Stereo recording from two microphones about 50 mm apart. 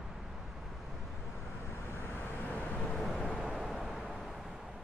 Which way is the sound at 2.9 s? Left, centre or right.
Centre.